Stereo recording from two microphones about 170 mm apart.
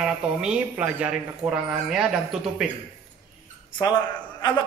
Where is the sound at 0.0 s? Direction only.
5° right (ahead or behind).